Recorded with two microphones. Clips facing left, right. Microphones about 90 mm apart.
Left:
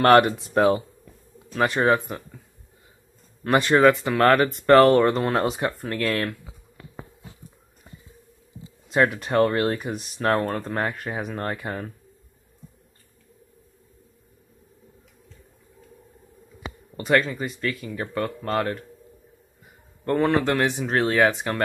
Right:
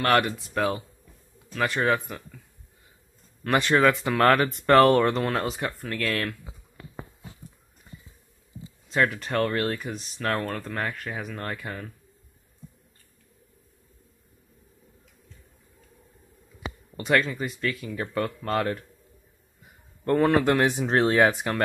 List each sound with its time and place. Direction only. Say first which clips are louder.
0.0 s speech: left 7 dB; 40° left (ahead or behind); by 2.4 s 20° left (ahead or behind)
3.4 s speech: left 4 dB; 10° left (ahead or behind)
5.7 s speech: left 3 dB; 25° left (ahead or behind)
8.8 s speech: left 3 dB; 15° left (ahead or behind)
10.2 s speech: left 5 dB; 25° left (ahead or behind)
16.9 s speech: left 2 dB; centre (ahead or behind)
20.1 s speech: even; centre (ahead or behind)
20.4 s speech: right 1 dB; 15° right (ahead or behind)